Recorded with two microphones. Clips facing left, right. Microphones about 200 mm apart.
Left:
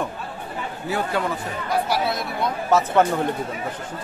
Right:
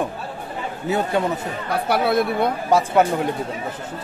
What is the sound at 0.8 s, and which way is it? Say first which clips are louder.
Speech: right 4 dB; 20° right (ahead or behind).